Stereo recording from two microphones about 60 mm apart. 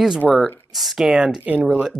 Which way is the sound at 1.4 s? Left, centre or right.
Right.